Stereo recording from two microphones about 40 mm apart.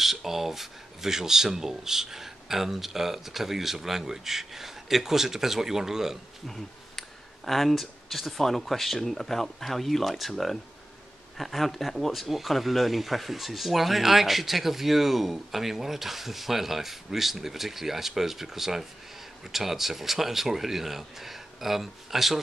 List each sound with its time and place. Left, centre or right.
0.0 s speech: centre
6.4 s speech: centre